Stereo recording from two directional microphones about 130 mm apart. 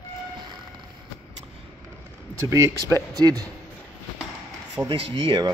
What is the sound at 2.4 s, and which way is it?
Speech, 25° right (ahead or behind).